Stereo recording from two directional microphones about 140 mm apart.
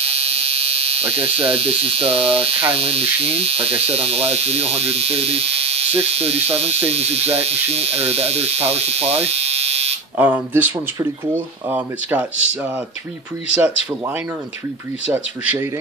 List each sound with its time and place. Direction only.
0.0 s speech: 45° right (ahead or behind)
10.1 s speech: 15° right (ahead or behind)